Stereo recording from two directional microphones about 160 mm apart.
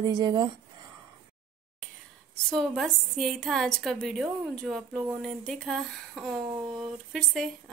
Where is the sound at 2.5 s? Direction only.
5° left (ahead or behind).